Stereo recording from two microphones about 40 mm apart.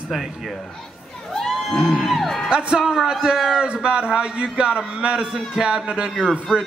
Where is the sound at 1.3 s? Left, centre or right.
Centre.